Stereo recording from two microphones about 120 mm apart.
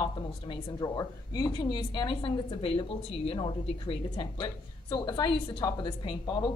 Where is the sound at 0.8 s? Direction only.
30° left (ahead or behind).